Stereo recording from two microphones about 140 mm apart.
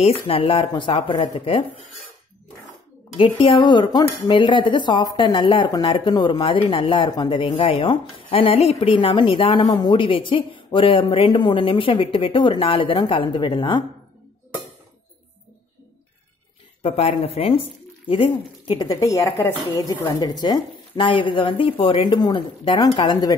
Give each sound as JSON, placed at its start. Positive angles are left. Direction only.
{"t": 0.0, "sound": "a woman's voice", "side_deg": 45}
{"t": 3.2, "sound": "a woman's voice", "side_deg": 35}
{"t": 16.8, "sound": "a woman's voice", "side_deg": 45}